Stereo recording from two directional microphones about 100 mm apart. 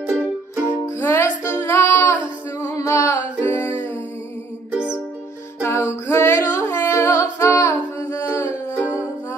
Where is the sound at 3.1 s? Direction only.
20° left (ahead or behind).